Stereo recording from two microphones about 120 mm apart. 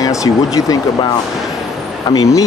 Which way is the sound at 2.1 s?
30° left (ahead or behind).